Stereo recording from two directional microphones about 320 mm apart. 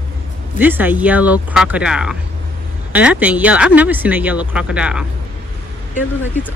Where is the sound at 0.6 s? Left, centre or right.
Centre.